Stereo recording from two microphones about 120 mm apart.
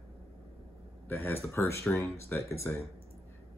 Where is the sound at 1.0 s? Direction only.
20° left (ahead or behind).